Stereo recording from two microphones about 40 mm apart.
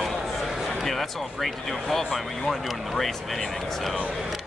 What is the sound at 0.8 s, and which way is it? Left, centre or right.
Speech, centre.